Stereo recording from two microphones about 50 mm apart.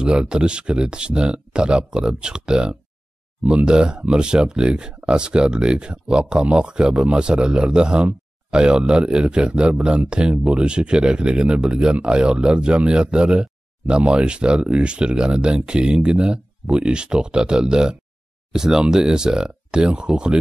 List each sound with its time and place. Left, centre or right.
0.0 s a man's voice: centre